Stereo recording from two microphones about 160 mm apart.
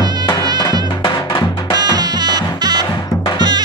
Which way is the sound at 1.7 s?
25° right (ahead or behind).